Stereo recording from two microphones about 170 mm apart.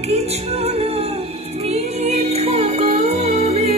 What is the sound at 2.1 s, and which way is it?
Music, 40° right (ahead or behind).